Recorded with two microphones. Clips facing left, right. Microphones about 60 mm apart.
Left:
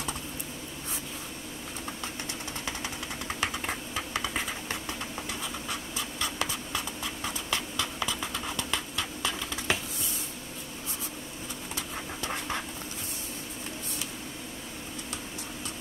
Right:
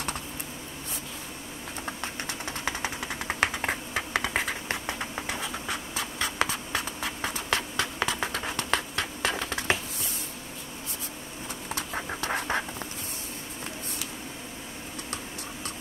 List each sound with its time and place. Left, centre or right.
2.6 s typing: right
4.3 s a sound: right
5.7 s writing: right
12.3 s duck: right